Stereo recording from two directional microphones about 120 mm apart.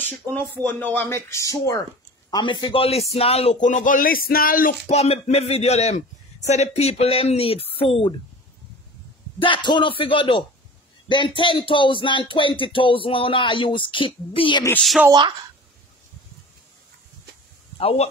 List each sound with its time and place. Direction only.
0.0 s speech: 15° left (ahead or behind)
2.3 s a man's voice: 40° left (ahead or behind); by 3.9 s 90° left
4.8 s a man's voice: 60° left (ahead or behind)
9.4 s speech: 40° left (ahead or behind)
15.0 s a woman's voice: 40° right (ahead or behind)
17.7 s speech: 55° left (ahead or behind)